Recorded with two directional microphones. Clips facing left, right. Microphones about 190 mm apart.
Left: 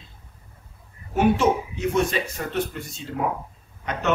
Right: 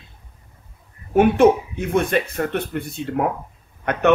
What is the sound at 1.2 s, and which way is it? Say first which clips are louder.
Speech: right 6 dB; 55° right (ahead or behind).